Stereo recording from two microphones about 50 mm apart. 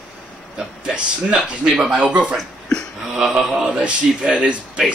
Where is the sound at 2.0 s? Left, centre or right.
Right.